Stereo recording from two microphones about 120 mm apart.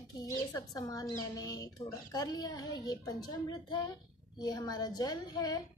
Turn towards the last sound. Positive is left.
turn(degrees=35)  # may be behind; listen again after turning